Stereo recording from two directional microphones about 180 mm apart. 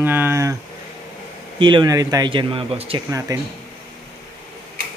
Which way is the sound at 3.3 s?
20° right (ahead or behind).